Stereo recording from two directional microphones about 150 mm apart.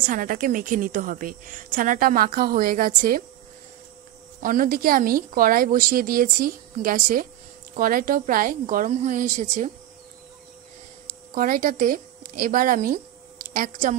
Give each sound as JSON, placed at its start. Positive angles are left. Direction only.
{"t": 0.0, "sound": "a woman's voice", "side_deg": -65}
{"t": 4.4, "sound": "a woman's voice", "side_deg": -65}
{"t": 11.3, "sound": "a woman's voice", "side_deg": -65}